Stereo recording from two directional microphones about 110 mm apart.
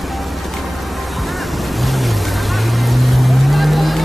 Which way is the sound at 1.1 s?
Centre (ahead or behind).